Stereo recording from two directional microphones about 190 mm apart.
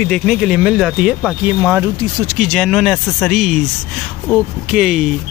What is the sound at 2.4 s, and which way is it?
Speech, centre (ahead or behind).